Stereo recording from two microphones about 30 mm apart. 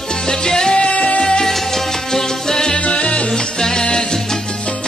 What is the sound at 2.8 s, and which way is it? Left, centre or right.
Music, left.